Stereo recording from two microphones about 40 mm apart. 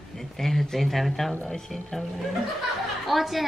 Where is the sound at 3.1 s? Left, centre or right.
Centre.